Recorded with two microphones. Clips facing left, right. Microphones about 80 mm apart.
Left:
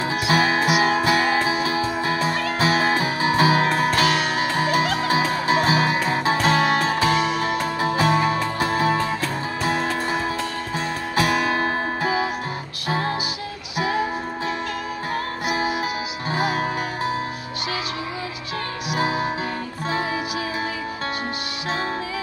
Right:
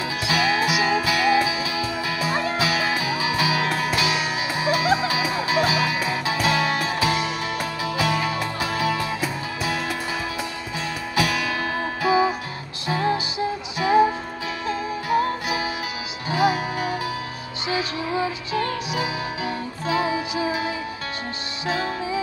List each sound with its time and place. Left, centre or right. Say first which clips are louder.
0.0 s music: left 3 dB; left
11.1 s music: left 3 dB; left
15.4 s music: left 3 dB; left
16.3 s music: right 2 dB; left
19.9 s music: right 3 dB; left